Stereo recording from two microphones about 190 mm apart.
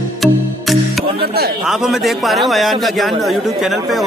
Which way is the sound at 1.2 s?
55° right (ahead or behind).